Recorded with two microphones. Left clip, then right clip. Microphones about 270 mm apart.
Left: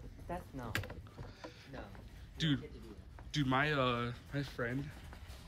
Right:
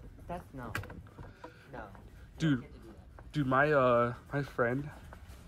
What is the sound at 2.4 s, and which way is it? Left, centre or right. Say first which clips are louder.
Speech: right 4 dB; centre.